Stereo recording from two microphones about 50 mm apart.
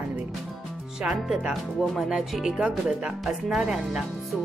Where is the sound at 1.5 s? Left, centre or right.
Centre.